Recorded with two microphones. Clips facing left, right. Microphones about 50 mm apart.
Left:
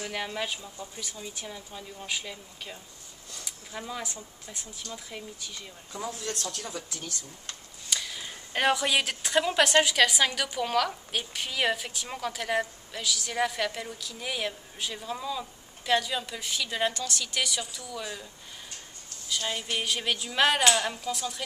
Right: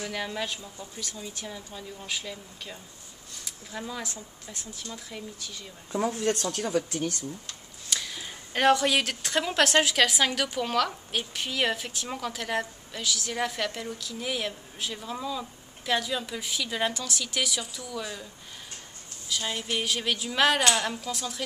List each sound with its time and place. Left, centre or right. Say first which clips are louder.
0.0 s speech: right 1 dB; centre
5.9 s speech: right 9 dB; right
7.9 s a woman's voice: even; centre
19.2 s a woman's voice: even; centre